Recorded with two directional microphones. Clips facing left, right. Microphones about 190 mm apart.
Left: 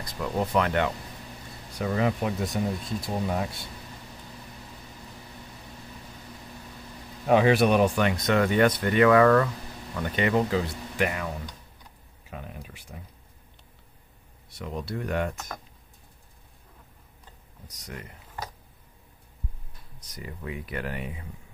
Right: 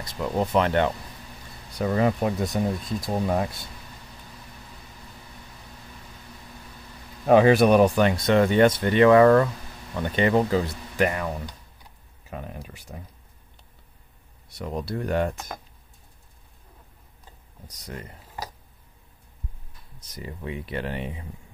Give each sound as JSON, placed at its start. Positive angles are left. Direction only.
{"t": 0.0, "sound": "speech", "side_deg": -25}
{"t": 7.2, "sound": "speech", "side_deg": -40}
{"t": 12.3, "sound": "a sound", "side_deg": -40}
{"t": 14.6, "sound": "speech", "side_deg": -35}
{"t": 17.6, "sound": "speech", "side_deg": -30}
{"t": 20.2, "sound": "speech", "side_deg": -25}